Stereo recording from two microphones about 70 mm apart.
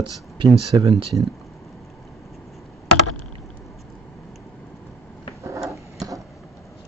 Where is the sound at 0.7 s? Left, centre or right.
Right.